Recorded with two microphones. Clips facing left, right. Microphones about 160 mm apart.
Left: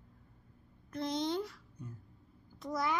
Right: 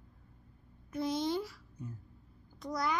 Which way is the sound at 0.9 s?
5° right (ahead or behind).